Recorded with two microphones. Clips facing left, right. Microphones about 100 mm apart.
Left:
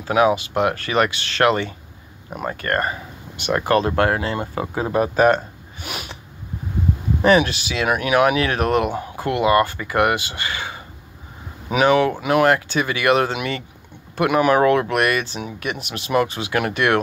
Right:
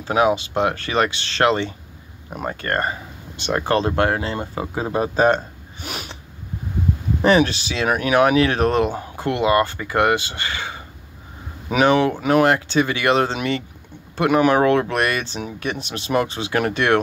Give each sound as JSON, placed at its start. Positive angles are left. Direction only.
{"t": 0.0, "sound": "speech", "side_deg": -30}
{"t": 7.2, "sound": "speech", "side_deg": -30}